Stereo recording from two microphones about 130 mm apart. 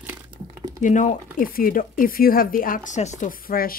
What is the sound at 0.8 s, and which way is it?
Speech, 70° left (ahead or behind).